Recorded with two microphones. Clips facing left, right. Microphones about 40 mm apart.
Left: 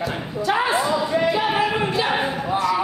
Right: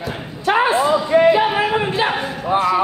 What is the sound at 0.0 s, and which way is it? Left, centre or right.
Slam, centre.